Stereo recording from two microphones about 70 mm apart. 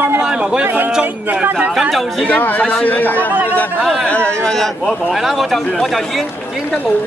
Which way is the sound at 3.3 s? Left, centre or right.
Right.